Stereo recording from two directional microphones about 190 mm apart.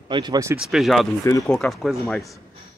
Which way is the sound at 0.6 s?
Centre (ahead or behind).